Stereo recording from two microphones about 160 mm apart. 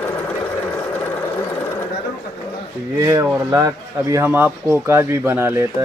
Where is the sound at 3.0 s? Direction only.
20° right (ahead or behind).